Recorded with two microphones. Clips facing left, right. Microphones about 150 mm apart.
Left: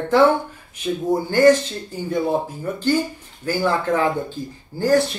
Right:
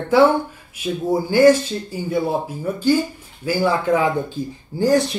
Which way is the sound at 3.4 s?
10° right (ahead or behind).